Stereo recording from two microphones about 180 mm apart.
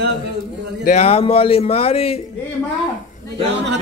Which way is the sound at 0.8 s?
35° left (ahead or behind).